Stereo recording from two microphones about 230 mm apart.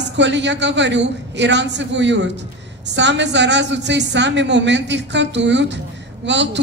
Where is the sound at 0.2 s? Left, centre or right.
Right.